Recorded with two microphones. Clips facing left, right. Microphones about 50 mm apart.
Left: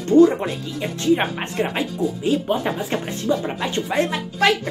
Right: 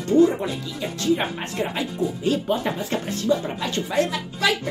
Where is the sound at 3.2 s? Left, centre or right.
Left.